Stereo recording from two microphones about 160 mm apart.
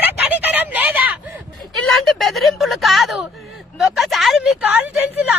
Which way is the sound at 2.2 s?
Centre (ahead or behind).